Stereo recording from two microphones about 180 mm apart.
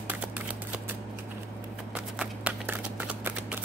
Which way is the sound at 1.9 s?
5° right (ahead or behind).